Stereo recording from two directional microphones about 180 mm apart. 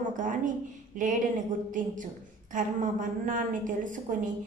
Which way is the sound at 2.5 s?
45° right (ahead or behind).